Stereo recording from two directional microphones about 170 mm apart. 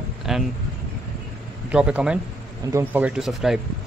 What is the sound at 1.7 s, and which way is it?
Speech, 5° right (ahead or behind).